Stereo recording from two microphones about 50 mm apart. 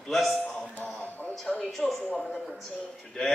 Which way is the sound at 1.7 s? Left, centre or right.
Centre.